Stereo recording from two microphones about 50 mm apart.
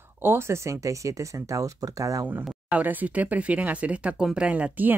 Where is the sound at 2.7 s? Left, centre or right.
Right.